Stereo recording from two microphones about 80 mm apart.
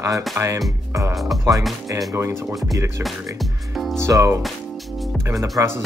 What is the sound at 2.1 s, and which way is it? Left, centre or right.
Speech, right.